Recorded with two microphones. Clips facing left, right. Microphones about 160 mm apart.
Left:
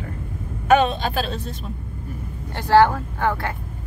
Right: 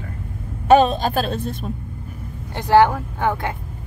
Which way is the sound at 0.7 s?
40° right (ahead or behind).